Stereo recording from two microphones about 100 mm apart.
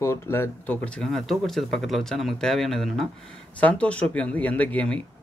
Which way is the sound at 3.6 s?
15° left (ahead or behind).